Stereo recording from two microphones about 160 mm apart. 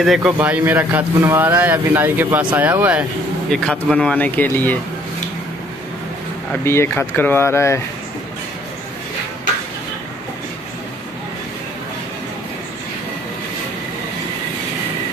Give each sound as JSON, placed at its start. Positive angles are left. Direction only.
{"t": 0.0, "sound": "speech", "side_deg": -5}
{"t": 3.4, "sound": "speech", "side_deg": 5}
{"t": 6.6, "sound": "speech", "side_deg": 15}